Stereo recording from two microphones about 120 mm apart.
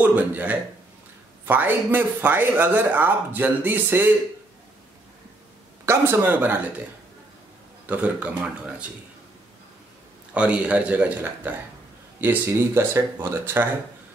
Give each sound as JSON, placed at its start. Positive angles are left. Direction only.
{"t": 0.0, "sound": "speech", "side_deg": -15}
{"t": 5.9, "sound": "speech", "side_deg": -20}
{"t": 7.8, "sound": "speech", "side_deg": -15}
{"t": 10.3, "sound": "speech", "side_deg": -10}